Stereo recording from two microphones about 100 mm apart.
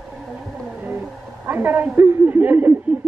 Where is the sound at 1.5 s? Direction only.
20° right (ahead or behind).